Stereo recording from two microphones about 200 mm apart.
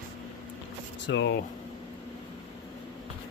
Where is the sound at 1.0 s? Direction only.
60° left (ahead or behind).